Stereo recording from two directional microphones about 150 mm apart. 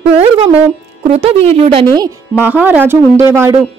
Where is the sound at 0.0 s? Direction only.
45° right (ahead or behind).